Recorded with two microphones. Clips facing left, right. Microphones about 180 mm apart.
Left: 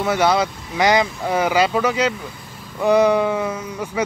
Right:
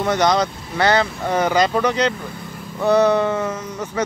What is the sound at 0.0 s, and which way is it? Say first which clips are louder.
A man's voice: even; 5° left (ahead or behind).